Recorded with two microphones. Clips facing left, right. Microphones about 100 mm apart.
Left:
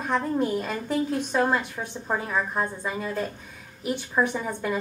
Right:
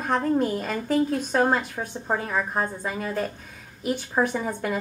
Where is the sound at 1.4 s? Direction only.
35° right (ahead or behind).